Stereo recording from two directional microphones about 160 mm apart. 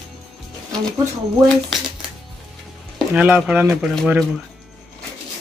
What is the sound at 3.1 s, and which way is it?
Speech, 10° right (ahead or behind).